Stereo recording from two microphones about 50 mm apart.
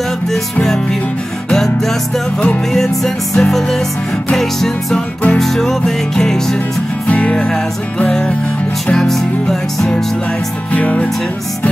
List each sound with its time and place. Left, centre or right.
1.5 s music: centre
7.1 s music: left
8.8 s music: centre
10.7 s music: left